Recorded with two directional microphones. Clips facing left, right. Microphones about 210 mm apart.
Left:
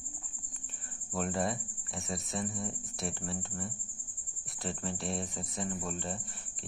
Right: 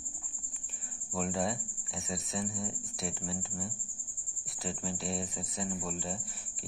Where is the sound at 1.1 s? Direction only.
Centre (ahead or behind).